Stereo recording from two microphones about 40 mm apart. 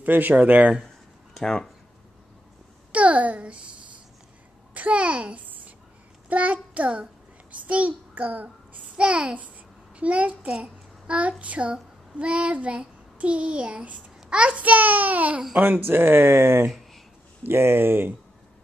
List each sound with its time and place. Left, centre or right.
0.0 s speech: right
1.3 s speech: centre
2.9 s a child's voice: right
4.7 s a child's voice: right
14.6 s speech: right
15.8 s speech: right